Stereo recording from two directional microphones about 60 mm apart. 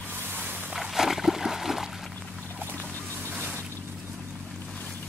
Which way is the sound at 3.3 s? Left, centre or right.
Right.